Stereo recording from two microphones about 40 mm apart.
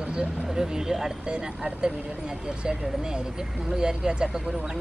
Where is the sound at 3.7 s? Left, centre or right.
Centre.